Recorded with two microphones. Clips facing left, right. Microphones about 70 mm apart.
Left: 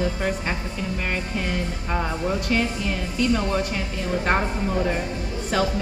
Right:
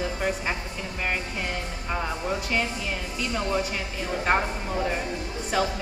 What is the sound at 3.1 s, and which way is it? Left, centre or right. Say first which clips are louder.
Speech: left 5 dB; centre.